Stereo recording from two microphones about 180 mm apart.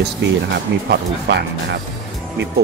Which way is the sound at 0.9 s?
70° right (ahead or behind).